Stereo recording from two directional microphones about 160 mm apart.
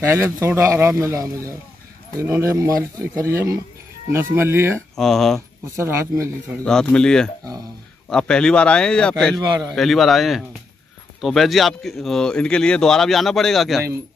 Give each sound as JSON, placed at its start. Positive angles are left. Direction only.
{"t": 0.1, "sound": "a man's voice", "side_deg": -15}
{"t": 4.7, "sound": "speech", "side_deg": 0}
{"t": 5.8, "sound": "a man's voice", "side_deg": -15}
{"t": 6.6, "sound": "speech", "side_deg": 5}
{"t": 9.5, "sound": "speech", "side_deg": -25}
{"t": 9.8, "sound": "speech", "side_deg": 0}